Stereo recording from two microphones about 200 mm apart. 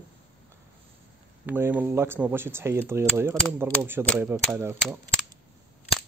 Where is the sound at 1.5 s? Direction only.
10° right (ahead or behind).